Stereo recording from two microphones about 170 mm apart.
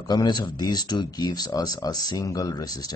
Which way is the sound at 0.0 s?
25° left (ahead or behind).